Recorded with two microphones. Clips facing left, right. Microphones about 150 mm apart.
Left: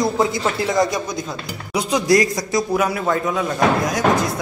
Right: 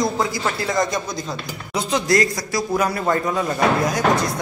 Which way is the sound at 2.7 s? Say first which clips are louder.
Right 1 dB; 5° left (ahead or behind).